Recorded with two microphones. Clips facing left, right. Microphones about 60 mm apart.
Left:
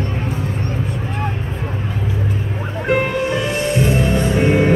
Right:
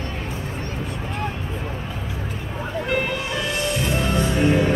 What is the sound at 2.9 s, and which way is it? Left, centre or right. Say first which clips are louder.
Music: left 8 dB; left.